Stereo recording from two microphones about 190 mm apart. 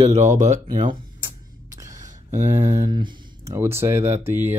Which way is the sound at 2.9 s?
25° right (ahead or behind).